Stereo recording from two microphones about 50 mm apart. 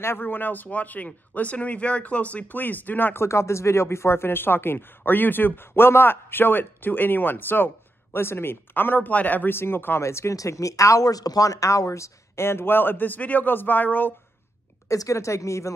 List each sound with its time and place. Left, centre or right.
0.0 s speech: left
3.2 s speech: left
9.1 s speech: left
9.5 s speech: left
10.0 s speech: left
14.9 s speech: left